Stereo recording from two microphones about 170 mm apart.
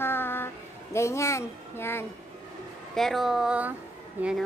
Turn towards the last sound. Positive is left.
turn(degrees=-5)  # may be behind; listen again after turning